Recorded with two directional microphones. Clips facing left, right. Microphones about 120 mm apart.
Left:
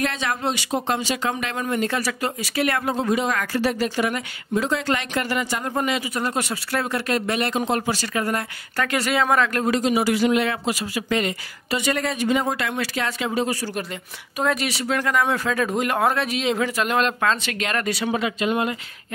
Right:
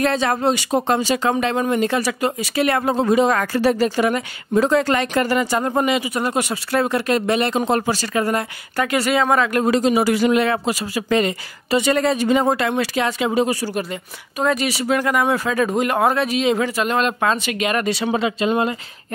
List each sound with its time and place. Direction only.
0.0 s speech: 35° right (ahead or behind)
5.8 s speech: 20° right (ahead or behind)
7.6 s speech: 40° right (ahead or behind)
8.7 s speech: 5° right (ahead or behind)
9.7 s speech: 35° right (ahead or behind); by 13.7 s 15° right (ahead or behind)
14.4 s speech: centre (ahead or behind)
17.2 s speech: 15° right (ahead or behind); by 18.8 s 30° right (ahead or behind)